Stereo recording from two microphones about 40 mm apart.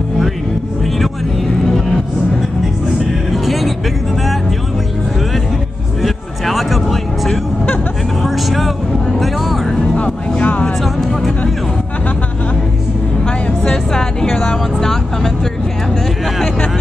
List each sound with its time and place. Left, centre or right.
3.4 s vehicle: centre
6.0 s a sound: centre
8.2 s vehicle: centre
9.9 s music: left
10.8 s a sound: centre
13.9 s music: centre